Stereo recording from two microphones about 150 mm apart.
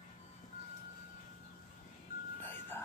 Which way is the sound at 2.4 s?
15° left (ahead or behind).